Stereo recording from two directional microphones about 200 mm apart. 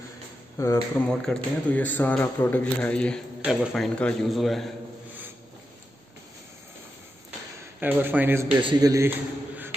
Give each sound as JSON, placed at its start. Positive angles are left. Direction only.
{"t": 0.6, "sound": "speech", "side_deg": 15}
{"t": 7.8, "sound": "speech", "side_deg": -10}